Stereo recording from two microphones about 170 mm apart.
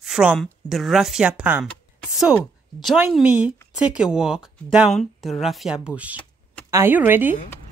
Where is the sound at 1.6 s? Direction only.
5° right (ahead or behind).